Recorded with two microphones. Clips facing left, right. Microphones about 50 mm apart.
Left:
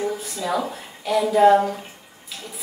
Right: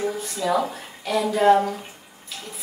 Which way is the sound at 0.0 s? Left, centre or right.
Centre.